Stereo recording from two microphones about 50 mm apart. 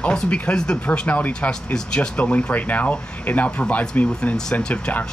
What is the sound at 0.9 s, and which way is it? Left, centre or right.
Speech, left.